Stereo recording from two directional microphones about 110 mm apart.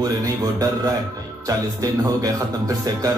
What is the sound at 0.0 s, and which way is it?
Music, 35° right (ahead or behind).